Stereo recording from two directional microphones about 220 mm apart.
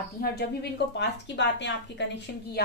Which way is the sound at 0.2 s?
45° left (ahead or behind).